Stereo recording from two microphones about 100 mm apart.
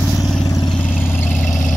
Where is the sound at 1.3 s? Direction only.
5° left (ahead or behind).